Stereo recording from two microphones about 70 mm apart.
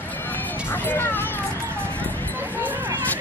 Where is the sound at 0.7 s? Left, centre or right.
Left.